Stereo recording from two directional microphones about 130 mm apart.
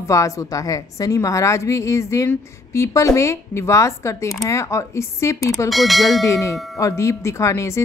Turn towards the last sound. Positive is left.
turn(degrees=20)  # may be behind; listen again after turning